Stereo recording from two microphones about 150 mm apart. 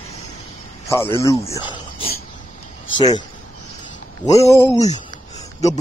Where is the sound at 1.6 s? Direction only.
35° left (ahead or behind).